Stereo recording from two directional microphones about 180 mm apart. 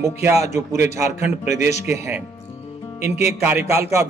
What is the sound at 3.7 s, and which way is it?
Speech, 15° right (ahead or behind).